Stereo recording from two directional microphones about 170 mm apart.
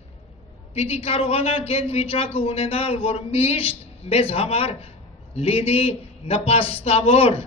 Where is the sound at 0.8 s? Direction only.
35° left (ahead or behind).